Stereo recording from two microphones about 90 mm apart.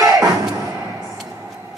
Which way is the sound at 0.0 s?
40° right (ahead or behind).